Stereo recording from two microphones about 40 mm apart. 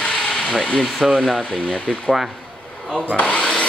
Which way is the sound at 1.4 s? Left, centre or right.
Left.